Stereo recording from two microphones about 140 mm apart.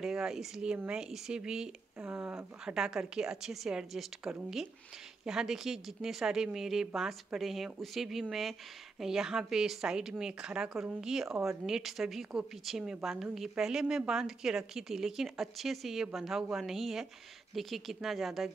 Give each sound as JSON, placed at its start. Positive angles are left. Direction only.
{"t": 0.0, "sound": "speech", "side_deg": -5}
{"t": 2.6, "sound": "speech", "side_deg": -5}